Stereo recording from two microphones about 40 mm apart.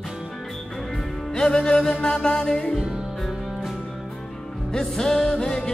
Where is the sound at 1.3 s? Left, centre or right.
Centre.